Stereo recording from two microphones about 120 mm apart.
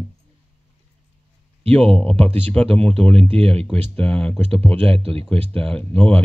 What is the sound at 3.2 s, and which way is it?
Speech, 55° right (ahead or behind).